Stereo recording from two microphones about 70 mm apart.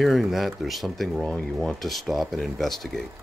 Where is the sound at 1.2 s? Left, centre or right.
Centre.